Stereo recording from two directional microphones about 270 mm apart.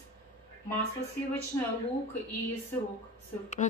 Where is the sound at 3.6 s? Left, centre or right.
Left.